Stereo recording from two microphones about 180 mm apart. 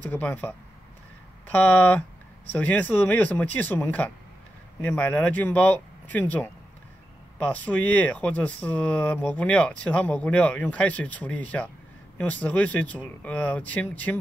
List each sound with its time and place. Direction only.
0.0 s speech: 10° left (ahead or behind)